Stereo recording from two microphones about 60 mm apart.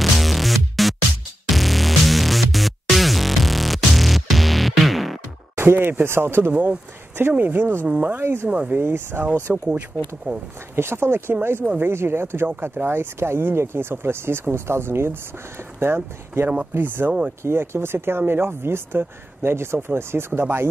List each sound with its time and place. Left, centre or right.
0.0 s music: centre
5.6 s speech: right
6.5 s speech: right
7.2 s speech: right
8.2 s speech: right
8.5 s speech: centre
8.7 s speech: right
9.7 s speech: right
10.8 s speech: right